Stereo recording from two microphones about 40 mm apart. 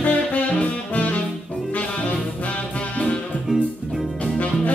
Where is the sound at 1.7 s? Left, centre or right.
Left.